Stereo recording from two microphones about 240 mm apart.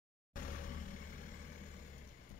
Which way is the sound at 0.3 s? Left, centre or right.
Left.